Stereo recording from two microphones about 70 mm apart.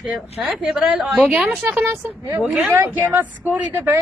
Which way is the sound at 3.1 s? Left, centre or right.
Right.